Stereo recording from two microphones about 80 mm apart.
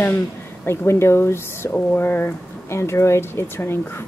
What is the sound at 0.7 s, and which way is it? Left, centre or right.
A woman's voice, left.